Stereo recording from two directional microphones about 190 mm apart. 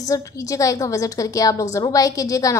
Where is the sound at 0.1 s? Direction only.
15° left (ahead or behind).